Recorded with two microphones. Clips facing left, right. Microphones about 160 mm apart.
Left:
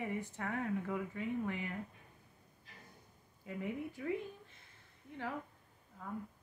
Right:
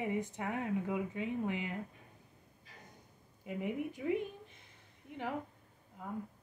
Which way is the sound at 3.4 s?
20° right (ahead or behind).